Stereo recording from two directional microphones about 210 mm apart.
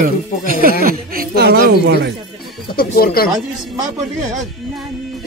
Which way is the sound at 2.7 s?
45° left (ahead or behind).